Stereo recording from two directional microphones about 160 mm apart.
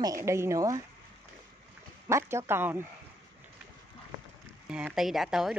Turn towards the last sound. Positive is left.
turn(degrees=0)  # may be behind; listen again after turning